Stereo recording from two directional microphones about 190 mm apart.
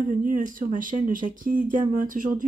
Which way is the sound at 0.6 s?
45° right (ahead or behind).